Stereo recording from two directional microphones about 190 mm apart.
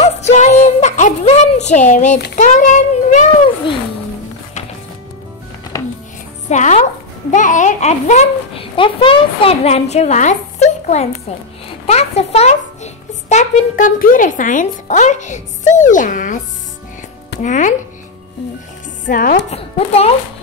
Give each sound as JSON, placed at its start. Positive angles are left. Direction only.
{"t": 0.0, "sound": "music", "side_deg": 35}
{"t": 2.3, "sound": "a child's voice", "side_deg": 40}
{"t": 5.7, "sound": "music", "side_deg": 15}
{"t": 6.5, "sound": "a child's voice", "side_deg": 40}
{"t": 17.4, "sound": "a child's voice", "side_deg": 40}
{"t": 19.0, "sound": "chopping", "side_deg": 45}
{"t": 19.5, "sound": "a child's voice", "side_deg": 35}